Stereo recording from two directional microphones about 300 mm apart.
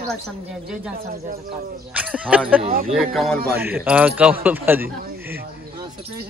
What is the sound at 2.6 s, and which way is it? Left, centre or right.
Speech, right.